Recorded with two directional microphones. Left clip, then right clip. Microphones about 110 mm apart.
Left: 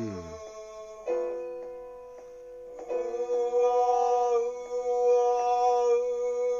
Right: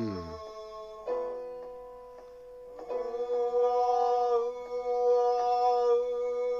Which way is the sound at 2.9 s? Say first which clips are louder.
Left 2 dB; 50° left (ahead or behind).